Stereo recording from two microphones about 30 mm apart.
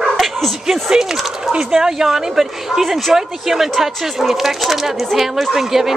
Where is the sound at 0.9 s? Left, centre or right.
Centre.